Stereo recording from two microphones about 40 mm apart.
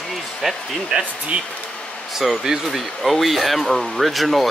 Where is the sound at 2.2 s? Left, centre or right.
Centre.